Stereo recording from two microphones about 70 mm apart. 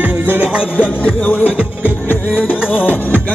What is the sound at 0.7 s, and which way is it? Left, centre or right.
Music, left.